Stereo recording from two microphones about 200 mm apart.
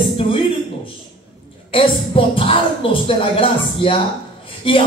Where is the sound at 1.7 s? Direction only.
25° left (ahead or behind).